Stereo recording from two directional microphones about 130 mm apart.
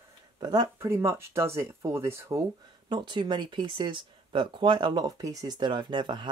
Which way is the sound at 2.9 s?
35° right (ahead or behind).